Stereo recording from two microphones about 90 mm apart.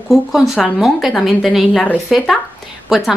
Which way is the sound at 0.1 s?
5° right (ahead or behind).